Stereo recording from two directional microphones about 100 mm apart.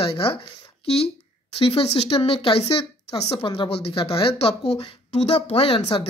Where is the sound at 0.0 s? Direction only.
65° left (ahead or behind).